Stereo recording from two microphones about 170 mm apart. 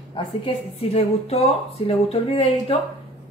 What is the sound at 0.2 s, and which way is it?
A woman's voice, 30° left (ahead or behind).